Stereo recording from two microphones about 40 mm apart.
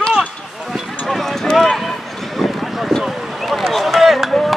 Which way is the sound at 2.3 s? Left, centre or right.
Centre.